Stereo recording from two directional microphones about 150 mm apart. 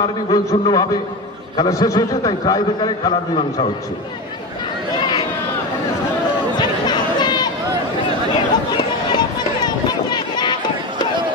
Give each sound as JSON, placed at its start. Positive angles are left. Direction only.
{"t": 0.0, "sound": "a man's voice", "side_deg": 30}
{"t": 6.6, "sound": "chatter", "side_deg": 30}
{"t": 8.7, "sound": "run", "side_deg": 30}